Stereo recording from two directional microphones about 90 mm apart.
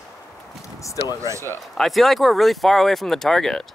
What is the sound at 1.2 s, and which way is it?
Speech, 35° right (ahead or behind).